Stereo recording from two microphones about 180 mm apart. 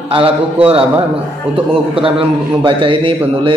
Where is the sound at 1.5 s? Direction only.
30° right (ahead or behind).